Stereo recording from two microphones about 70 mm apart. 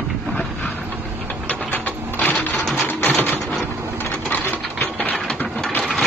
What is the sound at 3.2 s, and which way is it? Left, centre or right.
Typewriter, left.